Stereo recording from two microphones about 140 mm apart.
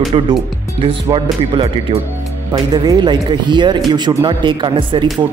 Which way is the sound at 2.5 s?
30° right (ahead or behind).